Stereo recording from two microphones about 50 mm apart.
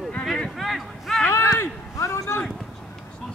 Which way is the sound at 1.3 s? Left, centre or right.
Left.